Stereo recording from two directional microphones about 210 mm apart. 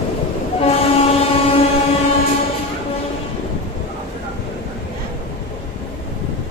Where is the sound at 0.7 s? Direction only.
30° left (ahead or behind).